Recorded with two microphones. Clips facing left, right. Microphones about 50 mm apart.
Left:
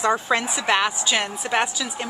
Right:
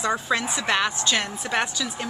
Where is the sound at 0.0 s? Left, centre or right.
Left.